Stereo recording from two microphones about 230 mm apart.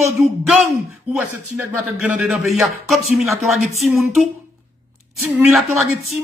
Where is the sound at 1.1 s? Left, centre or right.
Centre.